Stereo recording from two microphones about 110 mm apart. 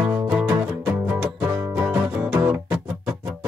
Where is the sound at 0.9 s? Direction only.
15° right (ahead or behind).